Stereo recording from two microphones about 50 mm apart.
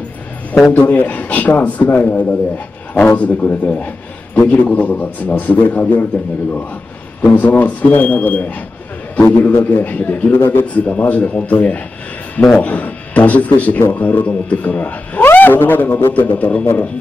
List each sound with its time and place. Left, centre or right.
0.7 s a man's voice: left
7.3 s a man's voice: left
16.1 s speech: left